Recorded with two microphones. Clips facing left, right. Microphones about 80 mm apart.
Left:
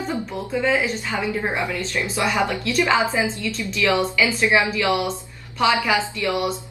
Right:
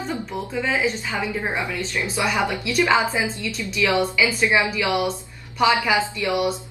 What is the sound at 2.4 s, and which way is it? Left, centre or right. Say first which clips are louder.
A woman's voice: even; centre.